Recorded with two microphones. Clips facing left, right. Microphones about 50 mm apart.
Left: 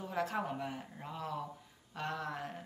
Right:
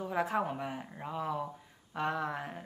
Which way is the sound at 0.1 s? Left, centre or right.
Centre.